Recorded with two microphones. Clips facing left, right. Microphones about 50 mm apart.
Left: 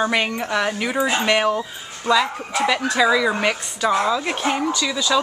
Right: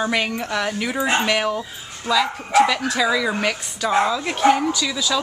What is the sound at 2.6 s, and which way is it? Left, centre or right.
A woman's voice, centre.